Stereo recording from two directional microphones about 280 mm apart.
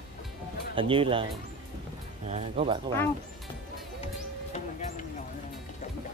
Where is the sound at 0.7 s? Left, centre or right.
Centre.